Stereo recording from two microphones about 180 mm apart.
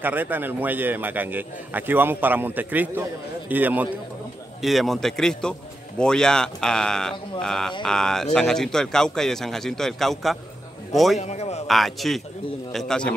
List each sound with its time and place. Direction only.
0.0 s a man's voice: 10° right (ahead or behind)
11.1 s a man's voice: 40° left (ahead or behind)
11.6 s a man's voice: centre (ahead or behind)